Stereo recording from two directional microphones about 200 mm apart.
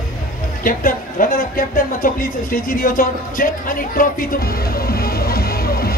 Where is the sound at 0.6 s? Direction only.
45° left (ahead or behind).